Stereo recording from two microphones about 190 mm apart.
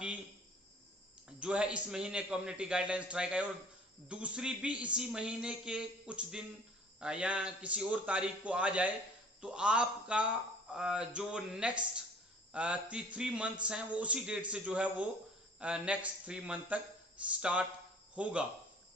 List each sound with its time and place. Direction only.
1.4 s a man's voice: 5° right (ahead or behind)